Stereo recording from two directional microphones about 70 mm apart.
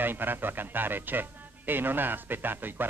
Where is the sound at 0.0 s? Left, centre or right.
Right.